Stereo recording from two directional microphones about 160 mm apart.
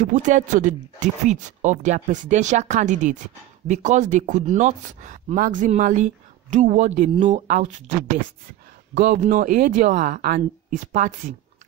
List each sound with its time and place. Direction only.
0.0 s speech: 50° right (ahead or behind)
8.9 s speech: 55° right (ahead or behind)